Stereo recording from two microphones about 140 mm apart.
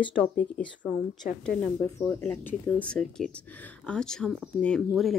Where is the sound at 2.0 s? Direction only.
10° left (ahead or behind).